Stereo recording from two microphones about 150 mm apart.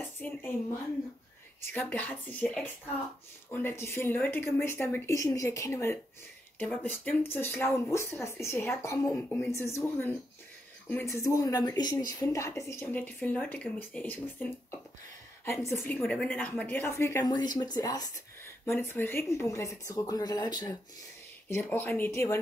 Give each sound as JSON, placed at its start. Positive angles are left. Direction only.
{"t": 0.0, "sound": "a sound", "side_deg": 15}
{"t": 1.7, "sound": "speech", "side_deg": 10}
{"t": 10.9, "sound": "speech", "side_deg": 15}
{"t": 21.5, "sound": "speech", "side_deg": 10}